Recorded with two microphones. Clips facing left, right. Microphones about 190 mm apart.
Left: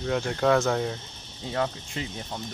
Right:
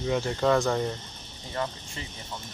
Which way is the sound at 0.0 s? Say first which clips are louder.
Left 1 dB; centre (ahead or behind).